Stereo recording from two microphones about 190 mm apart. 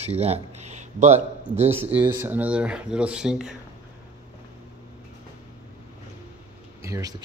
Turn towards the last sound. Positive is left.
turn(degrees=-20)  # may be behind; listen again after turning